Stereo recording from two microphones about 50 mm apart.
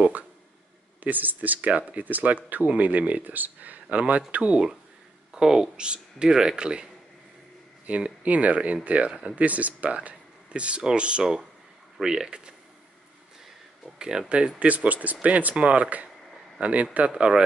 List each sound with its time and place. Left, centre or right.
1.0 s speech: right
5.3 s speech: centre
7.8 s speech: right
13.9 s speech: centre
14.6 s speech: right